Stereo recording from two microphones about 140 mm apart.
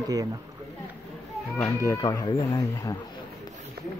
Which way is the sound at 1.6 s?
20° left (ahead or behind).